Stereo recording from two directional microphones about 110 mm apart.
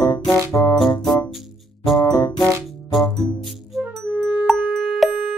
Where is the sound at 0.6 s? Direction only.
20° left (ahead or behind).